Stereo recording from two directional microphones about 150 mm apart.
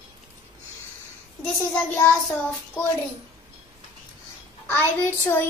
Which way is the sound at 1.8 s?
10° left (ahead or behind).